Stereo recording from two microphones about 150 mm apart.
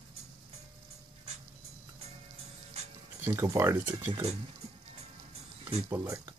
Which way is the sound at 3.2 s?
20° right (ahead or behind).